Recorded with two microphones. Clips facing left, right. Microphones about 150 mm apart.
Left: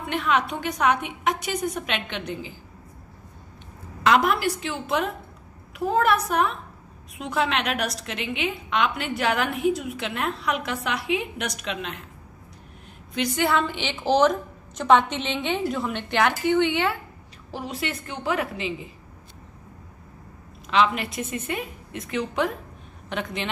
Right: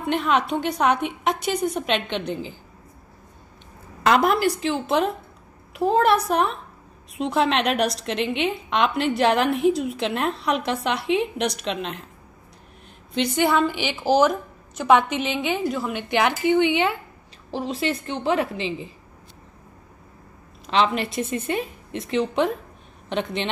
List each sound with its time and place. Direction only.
0.2 s a woman's voice: 30° right (ahead or behind)
4.0 s a woman's voice: 40° right (ahead or behind)
13.1 s a woman's voice: 25° right (ahead or behind)
17.5 s a woman's voice: 25° right (ahead or behind)
20.7 s a woman's voice: 30° right (ahead or behind)